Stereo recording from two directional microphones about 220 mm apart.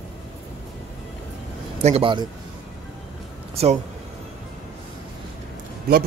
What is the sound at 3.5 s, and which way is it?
Speech, 25° right (ahead or behind).